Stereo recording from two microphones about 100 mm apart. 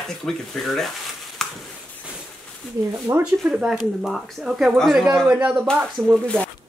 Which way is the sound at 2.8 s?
40° right (ahead or behind).